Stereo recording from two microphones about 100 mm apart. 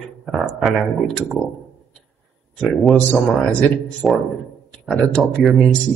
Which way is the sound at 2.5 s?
10° left (ahead or behind).